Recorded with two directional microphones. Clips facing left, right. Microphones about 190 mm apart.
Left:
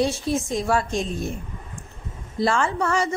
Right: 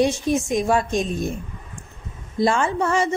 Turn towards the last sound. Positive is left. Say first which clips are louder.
# right 2 dB
turn(degrees=-20)  # may be behind; listen again after turning